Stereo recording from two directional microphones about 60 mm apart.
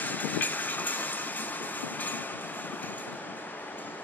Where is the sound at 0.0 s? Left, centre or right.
Left.